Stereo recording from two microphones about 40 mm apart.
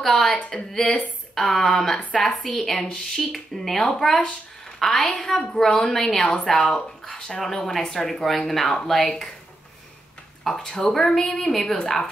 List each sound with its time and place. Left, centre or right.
0.0 s a woman's voice: centre
10.4 s speech: centre
11.4 s speech: centre